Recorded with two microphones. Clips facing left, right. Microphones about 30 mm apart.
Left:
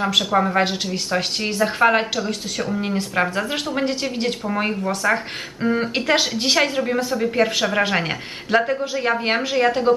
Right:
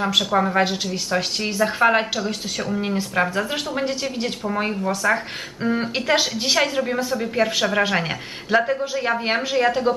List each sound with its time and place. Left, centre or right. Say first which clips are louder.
0.0 s a woman's voice: left 1 dB; centre